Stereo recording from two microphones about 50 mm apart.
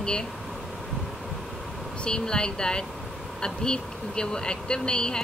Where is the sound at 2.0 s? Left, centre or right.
Centre.